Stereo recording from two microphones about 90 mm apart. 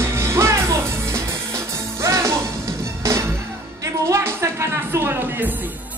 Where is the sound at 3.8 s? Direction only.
35° right (ahead or behind).